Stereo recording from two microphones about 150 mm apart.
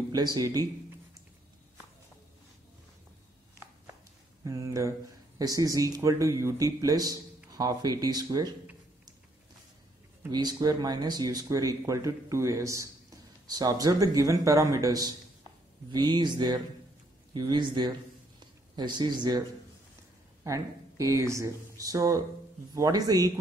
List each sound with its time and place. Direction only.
0.1 s speech: 25° right (ahead or behind)
4.5 s speech: 20° right (ahead or behind)
10.3 s a man's voice: 25° right (ahead or behind)
20.4 s speech: 20° right (ahead or behind)